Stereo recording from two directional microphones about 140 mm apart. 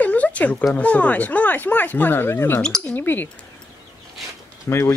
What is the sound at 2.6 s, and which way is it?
Speech, 5° left (ahead or behind).